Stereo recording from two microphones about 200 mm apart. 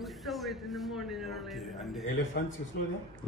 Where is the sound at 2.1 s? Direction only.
65° left (ahead or behind).